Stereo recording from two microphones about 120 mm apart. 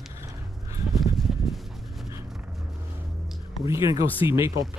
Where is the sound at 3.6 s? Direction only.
25° right (ahead or behind).